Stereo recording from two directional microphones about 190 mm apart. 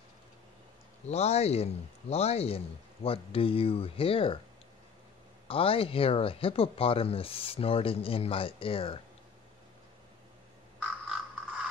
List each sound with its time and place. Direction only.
1.0 s speech: 35° left (ahead or behind)
5.5 s speech: 30° left (ahead or behind)
11.1 s frog: 5° right (ahead or behind)